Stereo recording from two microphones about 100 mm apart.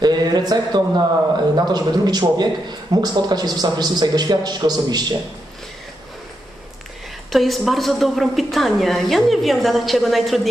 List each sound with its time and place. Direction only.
0.0 s a man's voice: 45° right (ahead or behind)
7.3 s a woman's voice: centre (ahead or behind)